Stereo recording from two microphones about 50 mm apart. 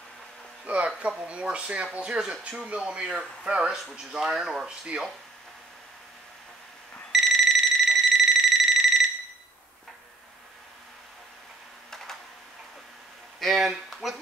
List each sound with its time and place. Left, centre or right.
0.7 s speech: right
4.0 s speech: centre
7.1 s a sound: centre
13.4 s speech: centre